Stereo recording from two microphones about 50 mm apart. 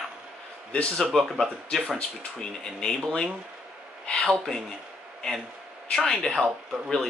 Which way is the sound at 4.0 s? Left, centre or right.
Left.